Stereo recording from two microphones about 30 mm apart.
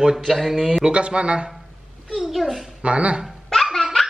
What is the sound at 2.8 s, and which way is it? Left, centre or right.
Speech, right.